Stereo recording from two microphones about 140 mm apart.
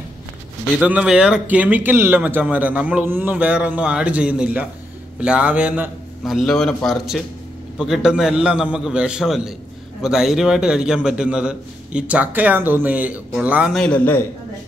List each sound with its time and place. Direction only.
0.7 s a man's voice: 5° right (ahead or behind)
13.7 s a man's voice: 10° left (ahead or behind)